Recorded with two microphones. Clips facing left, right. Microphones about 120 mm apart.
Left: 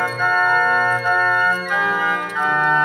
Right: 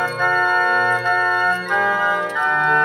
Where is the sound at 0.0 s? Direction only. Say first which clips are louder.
Even; 20° right (ahead or behind).